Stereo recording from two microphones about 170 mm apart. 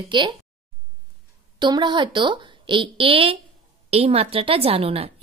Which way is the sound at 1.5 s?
25° right (ahead or behind).